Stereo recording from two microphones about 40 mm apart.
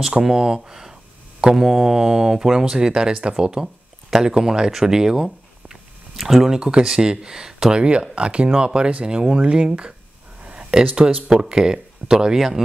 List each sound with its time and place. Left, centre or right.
0.0 s speech: centre
6.6 s speech: right
8.1 s speech: right
10.4 s a sound: right
10.7 s speech: centre
11.1 s speech: right; by 12.6 s centre